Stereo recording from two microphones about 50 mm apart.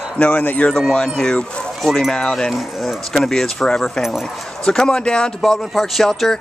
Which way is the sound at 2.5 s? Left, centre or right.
Centre.